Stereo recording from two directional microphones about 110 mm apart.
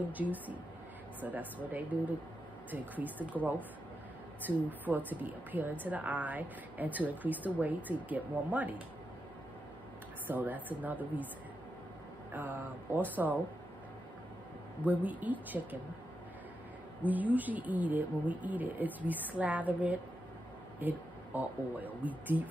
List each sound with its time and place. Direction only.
0.0 s a woman's voice: 15° right (ahead or behind)
4.5 s a woman's voice: 15° right (ahead or behind)
10.2 s a woman's voice: 15° right (ahead or behind)
12.3 s a woman's voice: 15° right (ahead or behind)
14.9 s a woman's voice: 15° right (ahead or behind)
17.0 s a woman's voice: 15° right (ahead or behind)